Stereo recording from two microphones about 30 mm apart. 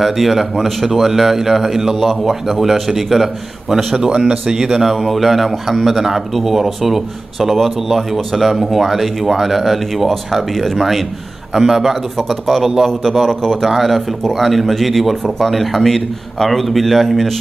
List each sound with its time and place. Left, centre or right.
0.0 s speech: centre
3.7 s speech: centre
4.1 s speech: right
4.6 s speech: centre
12.8 s a man's voice: centre
13.7 s speech: centre